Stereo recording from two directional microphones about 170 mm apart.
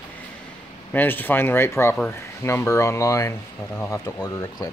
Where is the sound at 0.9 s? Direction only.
10° left (ahead or behind).